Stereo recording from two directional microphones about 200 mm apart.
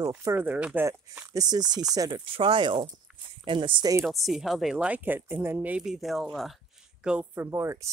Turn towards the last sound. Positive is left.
turn(degrees=-15)  # may be behind; listen again after turning